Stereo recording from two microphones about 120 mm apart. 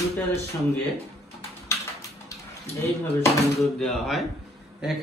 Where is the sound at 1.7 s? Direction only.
25° left (ahead or behind).